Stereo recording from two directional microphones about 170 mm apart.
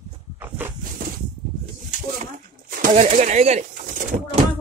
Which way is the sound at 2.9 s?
40° right (ahead or behind).